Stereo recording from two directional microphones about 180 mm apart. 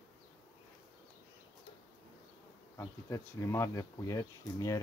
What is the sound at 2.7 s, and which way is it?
Speech, 15° left (ahead or behind).